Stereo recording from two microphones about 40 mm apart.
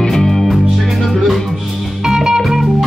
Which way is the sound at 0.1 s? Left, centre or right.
Centre.